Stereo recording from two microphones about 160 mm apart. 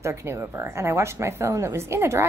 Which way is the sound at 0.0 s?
15° right (ahead or behind).